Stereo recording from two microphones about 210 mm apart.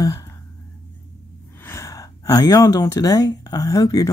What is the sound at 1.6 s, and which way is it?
Speech, 15° left (ahead or behind).